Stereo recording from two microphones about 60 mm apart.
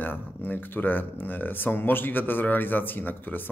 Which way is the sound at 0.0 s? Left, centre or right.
Left.